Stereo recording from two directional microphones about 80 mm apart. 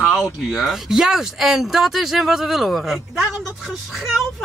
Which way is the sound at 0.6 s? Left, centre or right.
Centre.